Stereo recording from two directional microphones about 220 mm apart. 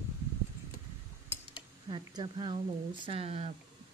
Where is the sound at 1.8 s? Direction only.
20° right (ahead or behind).